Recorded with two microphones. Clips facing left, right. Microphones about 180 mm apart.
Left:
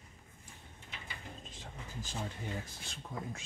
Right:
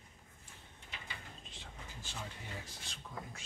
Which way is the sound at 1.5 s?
40° left (ahead or behind).